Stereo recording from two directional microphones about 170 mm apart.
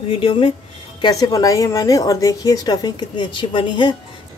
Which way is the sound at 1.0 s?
20° left (ahead or behind).